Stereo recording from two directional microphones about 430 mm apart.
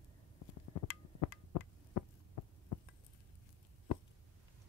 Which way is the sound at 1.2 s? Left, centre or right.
Left.